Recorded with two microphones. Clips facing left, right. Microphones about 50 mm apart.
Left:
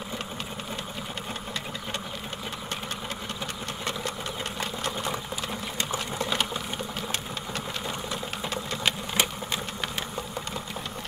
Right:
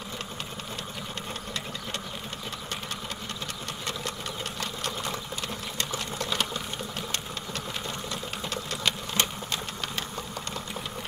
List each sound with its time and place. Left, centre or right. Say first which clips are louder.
4.6 s sewing machine: left 2 dB; centre
8.1 s sewing machine: left 2 dB; centre